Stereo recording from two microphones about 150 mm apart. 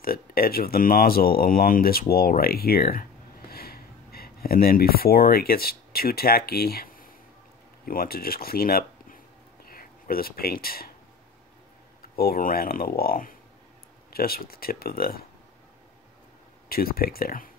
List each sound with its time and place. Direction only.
0.0 s speech: 85° left
12.2 s speech: 80° left
14.1 s speech: 90° left
16.6 s speech: 85° left